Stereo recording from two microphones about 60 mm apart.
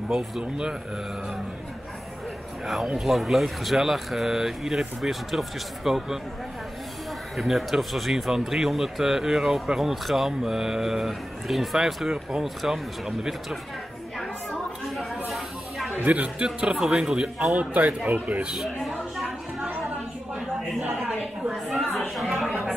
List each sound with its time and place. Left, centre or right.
0.1 s a man's voice: centre
2.6 s speech: centre
7.3 s speech: centre
14.5 s a sound: centre
16.0 s speech: right
16.4 s a man's voice: centre
17.6 s speech: right
18.6 s a sound: centre
21.0 s a sound: centre